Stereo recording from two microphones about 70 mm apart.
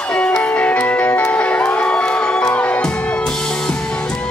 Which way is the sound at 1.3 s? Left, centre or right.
Centre.